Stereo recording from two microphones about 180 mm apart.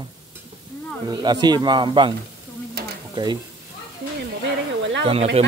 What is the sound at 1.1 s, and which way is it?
Speech, 25° right (ahead or behind).